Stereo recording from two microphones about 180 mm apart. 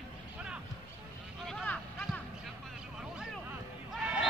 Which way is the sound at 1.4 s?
5° left (ahead or behind).